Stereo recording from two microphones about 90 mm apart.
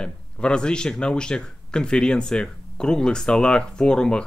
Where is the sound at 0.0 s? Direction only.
10° left (ahead or behind).